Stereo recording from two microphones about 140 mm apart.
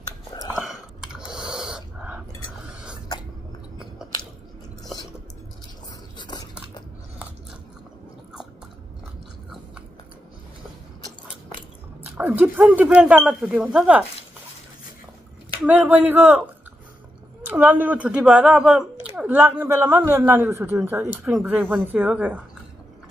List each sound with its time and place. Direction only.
0.3 s a sound: 25° left (ahead or behind)
0.6 s whispering: 5° right (ahead or behind)
4.0 s chewing: 5° right (ahead or behind)
6.1 s biting: 30° left (ahead or behind)
12.0 s speech: 10° right (ahead or behind)
15.6 s speech: 10° right (ahead or behind)
17.6 s speech: 10° right (ahead or behind)